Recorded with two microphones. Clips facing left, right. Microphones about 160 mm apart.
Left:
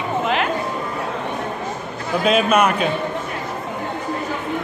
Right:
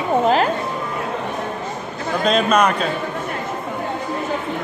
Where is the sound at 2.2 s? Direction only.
5° left (ahead or behind).